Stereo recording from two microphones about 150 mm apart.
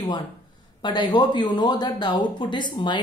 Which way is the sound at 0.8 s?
30° left (ahead or behind).